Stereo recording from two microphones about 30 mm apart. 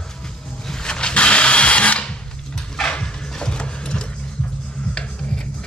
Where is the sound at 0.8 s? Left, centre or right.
Left.